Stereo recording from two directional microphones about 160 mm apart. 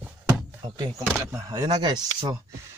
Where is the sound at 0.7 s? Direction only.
20° right (ahead or behind).